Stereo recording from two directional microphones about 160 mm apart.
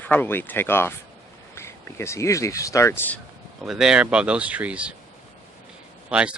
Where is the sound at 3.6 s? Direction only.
5° right (ahead or behind).